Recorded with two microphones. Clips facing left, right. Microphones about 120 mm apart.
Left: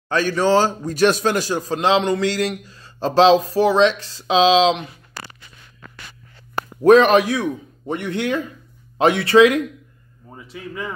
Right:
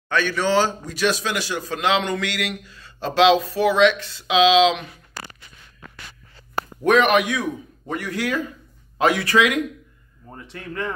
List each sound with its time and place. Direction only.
0.1 s a man's voice: 35° left (ahead or behind)
6.8 s a man's voice: 30° left (ahead or behind)
10.3 s speech: 5° left (ahead or behind)